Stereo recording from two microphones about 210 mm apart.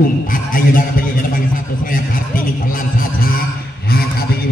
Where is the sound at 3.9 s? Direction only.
45° left (ahead or behind).